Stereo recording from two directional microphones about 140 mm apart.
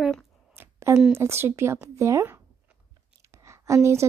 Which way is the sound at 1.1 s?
20° right (ahead or behind).